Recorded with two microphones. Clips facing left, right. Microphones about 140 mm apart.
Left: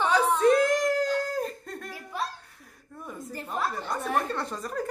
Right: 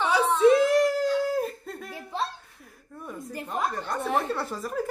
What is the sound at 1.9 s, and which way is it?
Laughter, 25° right (ahead or behind).